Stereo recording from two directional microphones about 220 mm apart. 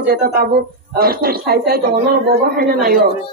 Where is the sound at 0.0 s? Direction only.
45° right (ahead or behind).